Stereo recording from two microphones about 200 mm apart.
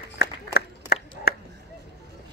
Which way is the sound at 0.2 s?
55° left (ahead or behind).